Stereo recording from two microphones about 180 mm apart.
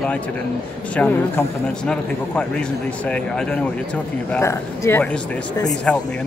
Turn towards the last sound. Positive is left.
turn(degrees=5)  # may be behind; listen again after turning